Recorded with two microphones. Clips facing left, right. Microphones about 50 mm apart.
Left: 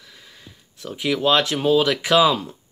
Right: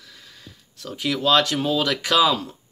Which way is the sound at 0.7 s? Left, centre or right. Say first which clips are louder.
Left 2 dB; centre.